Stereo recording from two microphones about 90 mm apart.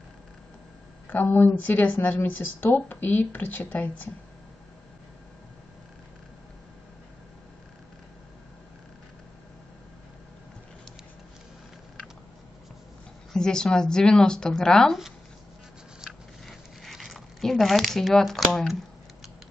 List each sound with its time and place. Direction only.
1.0 s speech: 20° left (ahead or behind)
13.3 s a woman's voice: 5° left (ahead or behind)
16.0 s zipper: centre (ahead or behind)